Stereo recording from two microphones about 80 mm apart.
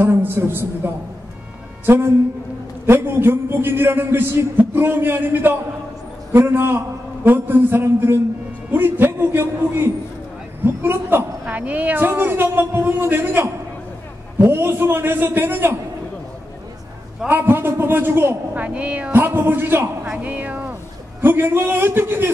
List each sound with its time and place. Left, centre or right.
0.0 s a man's voice: right
2.9 s a man's voice: right
17.3 s a man's voice: right
18.6 s a woman's voice: centre